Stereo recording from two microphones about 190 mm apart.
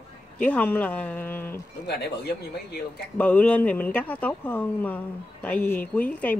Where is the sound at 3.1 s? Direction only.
5° left (ahead or behind).